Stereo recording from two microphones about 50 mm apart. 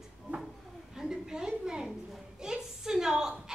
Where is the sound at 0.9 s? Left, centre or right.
Centre.